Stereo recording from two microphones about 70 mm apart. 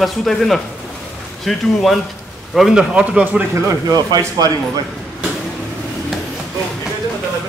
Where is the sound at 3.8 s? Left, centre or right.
Right.